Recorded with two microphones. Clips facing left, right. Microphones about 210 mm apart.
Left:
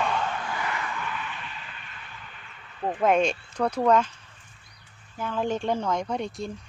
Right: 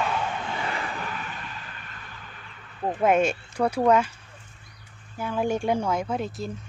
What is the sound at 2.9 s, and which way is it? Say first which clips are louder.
Speech: right 1 dB; 5° right (ahead or behind).